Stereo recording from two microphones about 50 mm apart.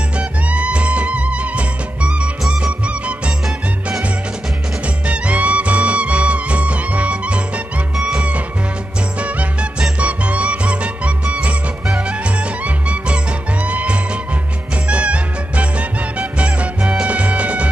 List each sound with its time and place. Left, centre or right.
0.2 s music: right
4.8 s music: right